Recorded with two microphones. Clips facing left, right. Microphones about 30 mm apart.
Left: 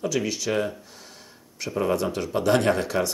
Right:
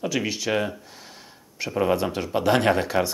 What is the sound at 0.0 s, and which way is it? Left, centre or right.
Speech, centre.